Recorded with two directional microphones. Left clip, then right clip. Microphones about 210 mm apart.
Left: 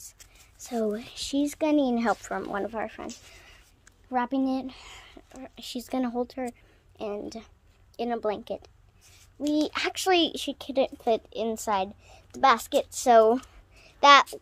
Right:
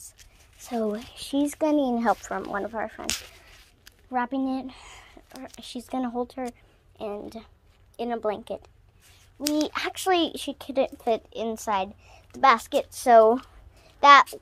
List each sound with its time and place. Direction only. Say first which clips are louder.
0.7 s speech: even; 15° left (ahead or behind)
1.4 s speech: right 1 dB; centre (ahead or behind)
4.1 s speech: even; 15° left (ahead or behind)
5.3 s speech: right 2 dB; centre (ahead or behind)
5.7 s speech: even; 15° left (ahead or behind)